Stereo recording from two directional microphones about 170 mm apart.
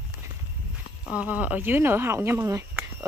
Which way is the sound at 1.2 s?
10° right (ahead or behind).